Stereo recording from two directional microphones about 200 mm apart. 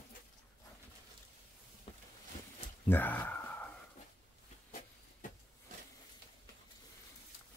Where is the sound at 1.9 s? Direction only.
25° left (ahead or behind).